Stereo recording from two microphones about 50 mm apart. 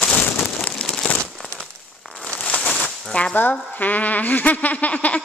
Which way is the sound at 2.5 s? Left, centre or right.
Centre.